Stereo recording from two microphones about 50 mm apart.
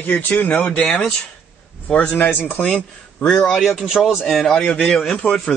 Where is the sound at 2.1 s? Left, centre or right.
Left.